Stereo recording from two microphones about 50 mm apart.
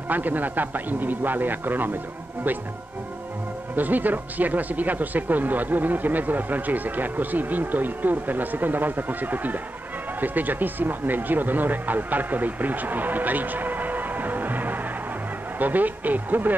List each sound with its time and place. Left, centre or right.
0.1 s speech: right
3.7 s speech: right